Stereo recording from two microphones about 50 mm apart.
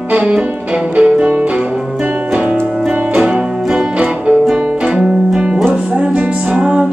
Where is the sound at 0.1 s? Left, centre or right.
Right.